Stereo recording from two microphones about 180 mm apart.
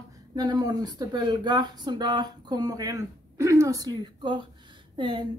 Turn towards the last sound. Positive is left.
turn(degrees=-25)  # may be behind; listen again after turning